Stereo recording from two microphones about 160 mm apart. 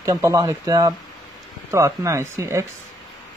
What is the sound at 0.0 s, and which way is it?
Speech, 20° right (ahead or behind).